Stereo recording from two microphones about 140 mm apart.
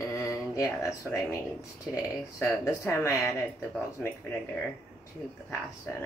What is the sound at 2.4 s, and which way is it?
Speech, 20° left (ahead or behind).